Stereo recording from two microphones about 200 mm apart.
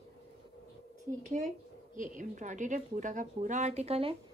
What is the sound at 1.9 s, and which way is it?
A woman's voice, 40° right (ahead or behind).